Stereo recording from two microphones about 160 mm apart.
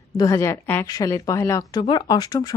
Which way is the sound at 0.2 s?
20° left (ahead or behind).